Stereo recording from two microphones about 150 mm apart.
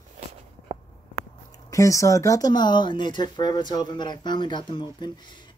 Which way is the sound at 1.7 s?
20° left (ahead or behind).